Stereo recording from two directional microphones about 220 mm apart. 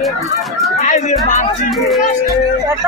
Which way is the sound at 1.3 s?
35° left (ahead or behind).